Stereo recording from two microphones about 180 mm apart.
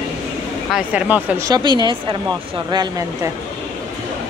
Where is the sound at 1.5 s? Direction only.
25° right (ahead or behind).